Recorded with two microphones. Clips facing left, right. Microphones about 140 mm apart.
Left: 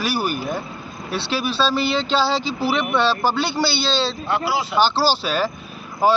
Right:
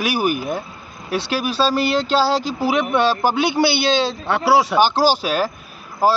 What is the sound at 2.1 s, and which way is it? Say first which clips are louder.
Speech: right 2 dB; 10° right (ahead or behind).